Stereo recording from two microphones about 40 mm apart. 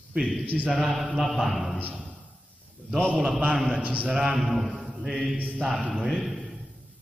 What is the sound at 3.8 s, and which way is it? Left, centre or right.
Speech, right.